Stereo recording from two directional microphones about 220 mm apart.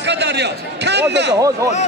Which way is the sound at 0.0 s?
50° right (ahead or behind).